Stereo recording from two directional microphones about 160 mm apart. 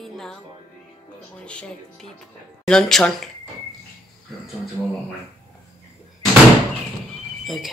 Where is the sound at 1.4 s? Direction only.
5° left (ahead or behind).